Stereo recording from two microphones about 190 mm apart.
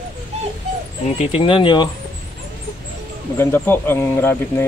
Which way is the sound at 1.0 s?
35° left (ahead or behind).